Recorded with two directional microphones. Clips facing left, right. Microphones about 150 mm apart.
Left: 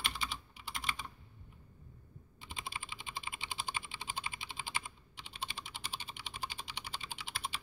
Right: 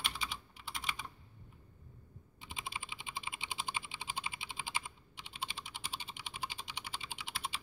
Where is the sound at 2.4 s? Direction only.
15° right (ahead or behind).